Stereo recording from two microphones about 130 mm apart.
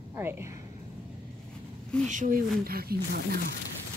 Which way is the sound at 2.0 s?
75° right (ahead or behind).